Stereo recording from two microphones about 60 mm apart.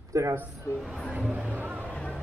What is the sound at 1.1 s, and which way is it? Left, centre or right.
Music, right.